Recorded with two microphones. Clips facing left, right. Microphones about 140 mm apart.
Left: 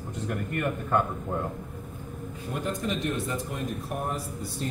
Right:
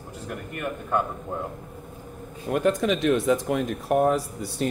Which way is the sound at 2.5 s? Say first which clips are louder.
Right 8 dB; 75° right (ahead or behind).